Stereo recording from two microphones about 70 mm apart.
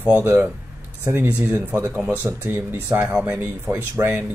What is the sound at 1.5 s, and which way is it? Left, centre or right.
Speech, right.